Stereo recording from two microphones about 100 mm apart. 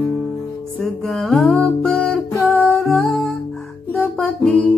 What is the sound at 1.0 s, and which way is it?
Mantra, 5° left (ahead or behind).